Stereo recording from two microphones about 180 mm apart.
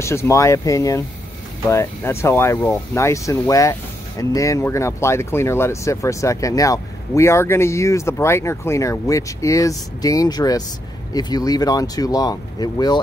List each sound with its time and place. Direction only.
0.0 s speech: 15° left (ahead or behind)